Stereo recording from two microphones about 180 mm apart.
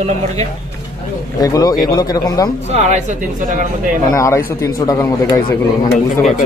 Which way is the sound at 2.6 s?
40° right (ahead or behind).